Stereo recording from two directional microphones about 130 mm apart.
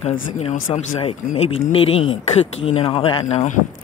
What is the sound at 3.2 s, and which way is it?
Speech, 65° left (ahead or behind).